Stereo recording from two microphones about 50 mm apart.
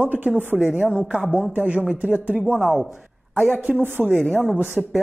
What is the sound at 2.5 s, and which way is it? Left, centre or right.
Speech, centre.